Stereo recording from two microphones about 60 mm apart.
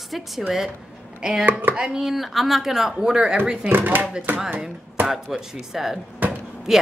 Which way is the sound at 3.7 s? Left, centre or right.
Right.